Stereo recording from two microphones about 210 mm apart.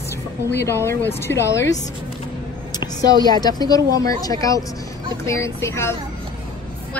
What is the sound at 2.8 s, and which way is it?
A woman's voice, 20° left (ahead or behind).